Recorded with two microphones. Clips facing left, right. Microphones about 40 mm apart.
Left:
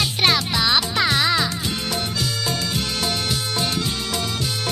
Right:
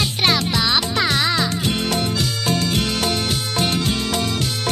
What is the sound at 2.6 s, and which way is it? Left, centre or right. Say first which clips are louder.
Music: right 4 dB; right.